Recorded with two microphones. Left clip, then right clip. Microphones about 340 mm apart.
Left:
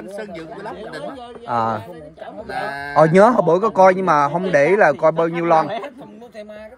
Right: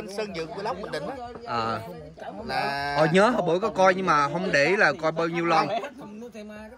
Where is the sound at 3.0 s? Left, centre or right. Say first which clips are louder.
Left 9 dB; centre.